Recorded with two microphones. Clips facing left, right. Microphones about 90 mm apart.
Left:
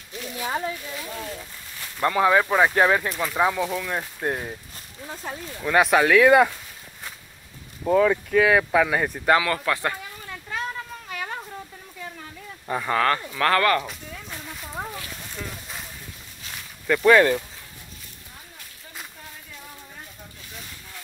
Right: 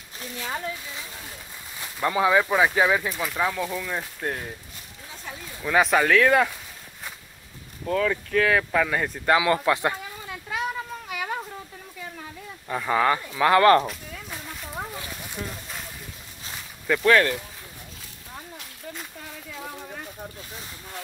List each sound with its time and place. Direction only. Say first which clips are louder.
0.4 s speech: left 4 dB; 20° left (ahead or behind)
2.0 s speech: left 2 dB; 5° right (ahead or behind)
3.3 s speech: left 5 dB; 15° left (ahead or behind)
3.7 s speech: left 2 dB; 5° left (ahead or behind)
5.2 s speech: left 5 dB; 45° left (ahead or behind)
5.6 s speech: left 2 dB; 5° left (ahead or behind)
7.8 s speech: left 5 dB; 15° left (ahead or behind)
9.4 s a sound: right 3 dB; 20° right (ahead or behind)
12.9 s speech: right 1 dB; 10° right (ahead or behind)
13.8 s a sound: right 2 dB; centre (ahead or behind)
17.0 s speech: left 4 dB; 10° left (ahead or behind)